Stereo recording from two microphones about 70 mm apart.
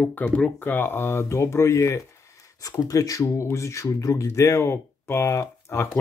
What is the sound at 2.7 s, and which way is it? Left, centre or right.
Speech, left.